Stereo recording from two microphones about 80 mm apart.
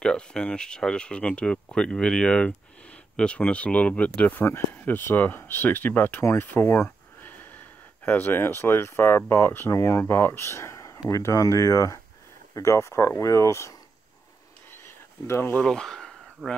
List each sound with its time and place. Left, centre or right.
0.0 s speech: centre; by 10.0 s left
10.0 s speech: left
14.7 s a sound: left
15.6 s speech: centre